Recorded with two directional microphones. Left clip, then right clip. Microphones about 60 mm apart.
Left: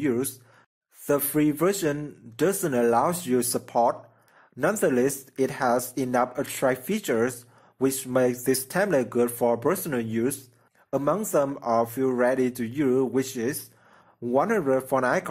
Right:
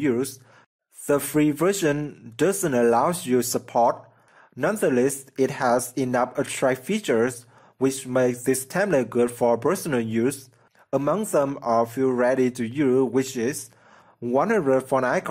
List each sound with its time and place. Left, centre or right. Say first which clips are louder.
0.0 s speech: right 2 dB; centre
1.0 s speech: right 2 dB; right
2.5 s speech: right 3 dB; centre
6.9 s speech: right 3 dB; centre
11.3 s speech: right 3 dB; centre